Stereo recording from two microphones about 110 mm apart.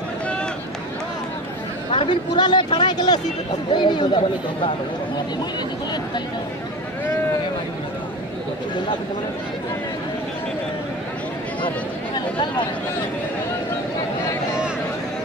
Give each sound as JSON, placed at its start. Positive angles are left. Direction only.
{"t": 2.0, "sound": "speech", "side_deg": 45}